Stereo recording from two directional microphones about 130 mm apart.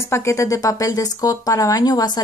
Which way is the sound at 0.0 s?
20° left (ahead or behind).